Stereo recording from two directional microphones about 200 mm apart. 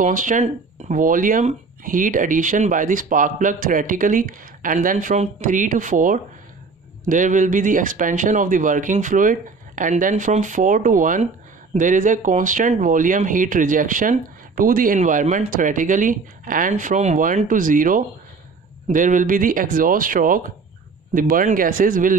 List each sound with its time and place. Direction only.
0.0 s speech: 40° right (ahead or behind)